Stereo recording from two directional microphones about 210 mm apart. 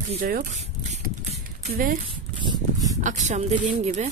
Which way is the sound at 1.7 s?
40° right (ahead or behind).